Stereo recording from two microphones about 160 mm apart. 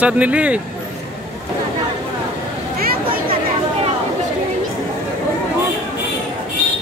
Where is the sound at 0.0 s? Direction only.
10° right (ahead or behind).